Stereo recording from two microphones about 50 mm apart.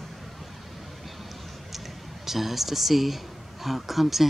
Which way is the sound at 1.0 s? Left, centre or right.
Centre.